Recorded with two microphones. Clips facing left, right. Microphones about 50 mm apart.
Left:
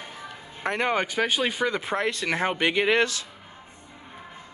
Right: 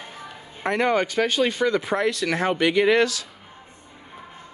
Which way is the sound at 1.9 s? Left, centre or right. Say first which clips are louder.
Right 3 dB; left.